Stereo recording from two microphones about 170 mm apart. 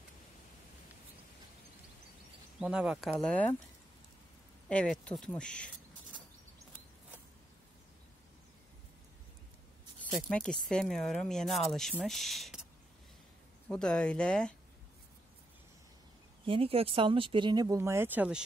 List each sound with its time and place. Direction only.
2.6 s speech: 5° right (ahead or behind)
3.1 s speech: 5° left (ahead or behind)
4.6 s speech: 5° left (ahead or behind)
10.1 s speech: 5° left (ahead or behind)
13.7 s speech: 5° left (ahead or behind)
16.4 s speech: 30° right (ahead or behind); by 18.4 s 10° right (ahead or behind)